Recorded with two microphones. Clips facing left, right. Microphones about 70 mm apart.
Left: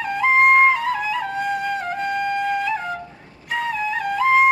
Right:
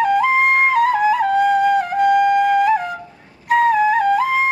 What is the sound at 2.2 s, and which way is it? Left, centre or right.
Flute, right.